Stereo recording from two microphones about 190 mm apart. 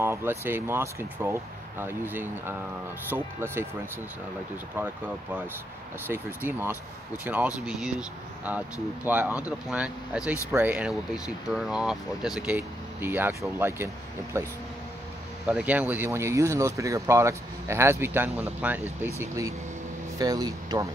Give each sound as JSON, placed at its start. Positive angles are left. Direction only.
{"t": 0.0, "sound": "speech", "side_deg": -10}
{"t": 4.7, "sound": "speech", "side_deg": -10}
{"t": 9.0, "sound": "speech", "side_deg": -10}